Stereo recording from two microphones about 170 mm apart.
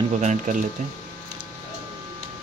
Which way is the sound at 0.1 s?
45° right (ahead or behind).